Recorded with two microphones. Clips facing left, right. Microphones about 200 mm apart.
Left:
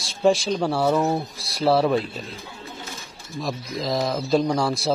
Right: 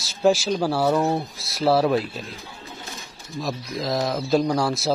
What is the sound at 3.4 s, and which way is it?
Speech, centre (ahead or behind).